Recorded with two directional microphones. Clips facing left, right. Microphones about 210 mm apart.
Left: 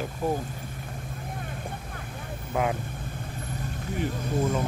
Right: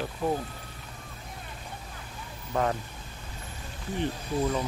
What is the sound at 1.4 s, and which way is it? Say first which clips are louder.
Vehicle: left 6 dB; 55° left (ahead or behind).